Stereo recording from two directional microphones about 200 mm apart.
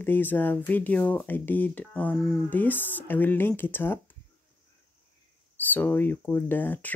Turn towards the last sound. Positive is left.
turn(degrees=10)  # may be behind; listen again after turning